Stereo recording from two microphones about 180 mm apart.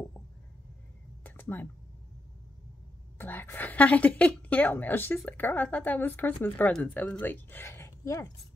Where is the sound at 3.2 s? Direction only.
10° left (ahead or behind).